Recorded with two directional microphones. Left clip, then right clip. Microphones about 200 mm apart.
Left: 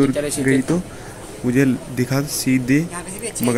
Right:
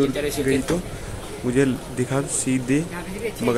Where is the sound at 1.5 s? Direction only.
15° left (ahead or behind).